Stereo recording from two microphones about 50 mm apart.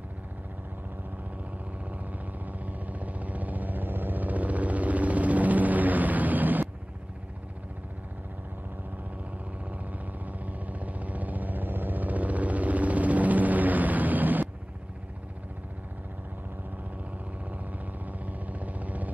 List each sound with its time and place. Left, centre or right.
2.4 s vehicle: right
10.2 s vehicle: right
18.2 s vehicle: right